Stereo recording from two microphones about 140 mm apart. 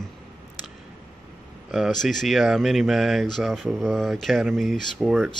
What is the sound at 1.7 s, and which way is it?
Speech, centre (ahead or behind).